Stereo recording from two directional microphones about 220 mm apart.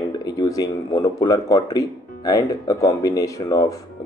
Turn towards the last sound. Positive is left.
turn(degrees=15)  # may be behind; listen again after turning